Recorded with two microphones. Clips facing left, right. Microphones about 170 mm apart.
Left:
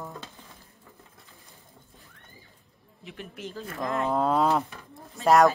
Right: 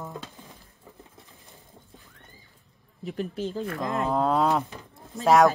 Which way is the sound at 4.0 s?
Centre (ahead or behind).